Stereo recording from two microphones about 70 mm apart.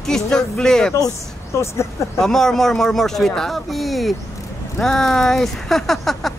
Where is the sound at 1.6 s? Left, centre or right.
Left.